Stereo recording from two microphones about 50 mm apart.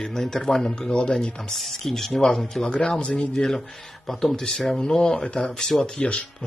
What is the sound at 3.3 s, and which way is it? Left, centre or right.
Speech, centre.